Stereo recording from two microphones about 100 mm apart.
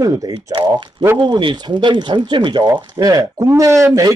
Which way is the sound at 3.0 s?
35° right (ahead or behind).